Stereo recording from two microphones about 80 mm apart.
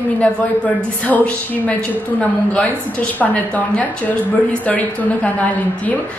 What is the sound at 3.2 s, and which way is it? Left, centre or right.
Speech, centre.